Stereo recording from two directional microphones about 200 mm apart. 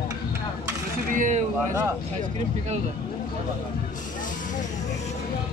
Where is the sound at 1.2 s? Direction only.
35° right (ahead or behind).